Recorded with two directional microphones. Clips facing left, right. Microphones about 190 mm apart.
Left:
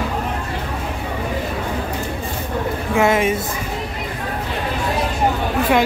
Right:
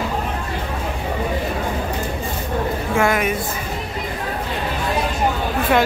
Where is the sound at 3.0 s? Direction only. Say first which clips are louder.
Left 3 dB; 25° left (ahead or behind).